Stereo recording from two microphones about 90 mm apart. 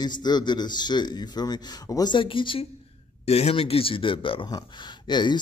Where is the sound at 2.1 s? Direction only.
70° left (ahead or behind).